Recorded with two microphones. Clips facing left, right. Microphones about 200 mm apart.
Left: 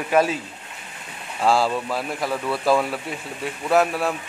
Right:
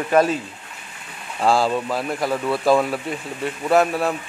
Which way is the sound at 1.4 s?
Centre (ahead or behind).